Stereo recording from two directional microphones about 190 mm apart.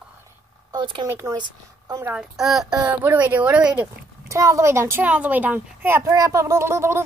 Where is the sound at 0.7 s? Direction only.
25° right (ahead or behind).